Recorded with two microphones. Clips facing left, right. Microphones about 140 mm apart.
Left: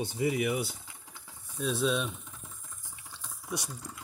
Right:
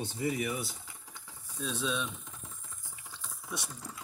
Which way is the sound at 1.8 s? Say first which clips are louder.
Left 5 dB; 40° left (ahead or behind).